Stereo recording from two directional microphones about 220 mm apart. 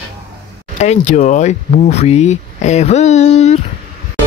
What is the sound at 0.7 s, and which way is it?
Speech, 35° left (ahead or behind).